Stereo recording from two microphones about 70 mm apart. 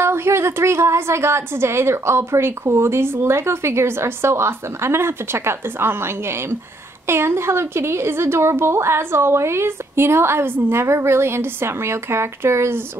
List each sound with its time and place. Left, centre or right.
0.0 s a woman's voice: right